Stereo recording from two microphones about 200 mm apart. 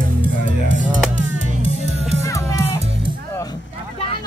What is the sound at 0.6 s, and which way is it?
Music, 40° right (ahead or behind).